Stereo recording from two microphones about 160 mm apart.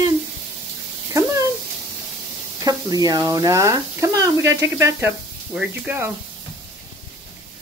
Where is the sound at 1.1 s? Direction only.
20° right (ahead or behind).